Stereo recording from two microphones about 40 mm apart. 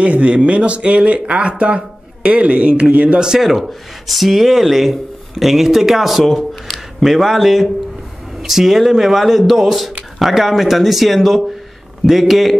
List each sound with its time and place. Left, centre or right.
0.0 s speech: right
3.2 s speech: centre